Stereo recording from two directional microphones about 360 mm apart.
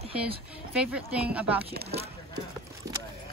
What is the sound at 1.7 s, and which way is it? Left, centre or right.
Speech, right.